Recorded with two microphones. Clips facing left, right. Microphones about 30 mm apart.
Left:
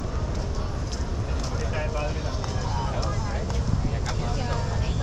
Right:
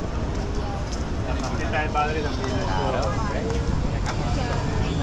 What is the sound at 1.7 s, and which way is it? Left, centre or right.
Speech, right.